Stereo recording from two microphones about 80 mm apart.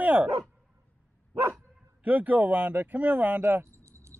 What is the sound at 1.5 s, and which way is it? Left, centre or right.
Bow-wow, right.